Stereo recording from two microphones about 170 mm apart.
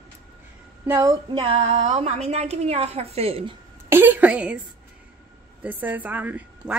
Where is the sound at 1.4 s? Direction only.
40° right (ahead or behind).